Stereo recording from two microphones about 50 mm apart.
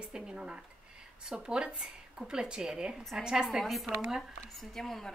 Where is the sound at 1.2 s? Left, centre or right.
Centre.